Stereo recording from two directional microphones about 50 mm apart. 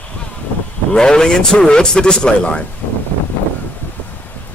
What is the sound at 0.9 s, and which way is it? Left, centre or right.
A man's voice, centre.